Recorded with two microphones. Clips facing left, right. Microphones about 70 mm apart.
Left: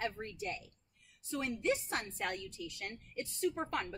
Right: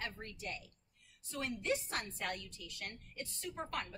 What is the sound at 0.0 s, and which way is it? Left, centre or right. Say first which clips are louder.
A woman's voice: left 5 dB; left.